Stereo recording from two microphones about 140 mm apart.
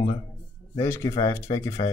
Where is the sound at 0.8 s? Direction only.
20° left (ahead or behind).